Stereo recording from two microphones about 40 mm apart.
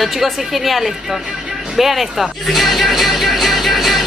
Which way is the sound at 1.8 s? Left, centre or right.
Centre.